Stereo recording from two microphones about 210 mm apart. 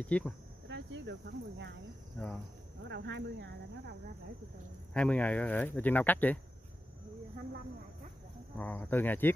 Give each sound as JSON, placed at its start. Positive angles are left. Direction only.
{"t": 0.0, "sound": "speech", "side_deg": 5}
{"t": 0.7, "sound": "speech", "side_deg": -60}
{"t": 2.9, "sound": "speech", "side_deg": -55}
{"t": 4.9, "sound": "speech", "side_deg": 5}
{"t": 8.5, "sound": "speech", "side_deg": 10}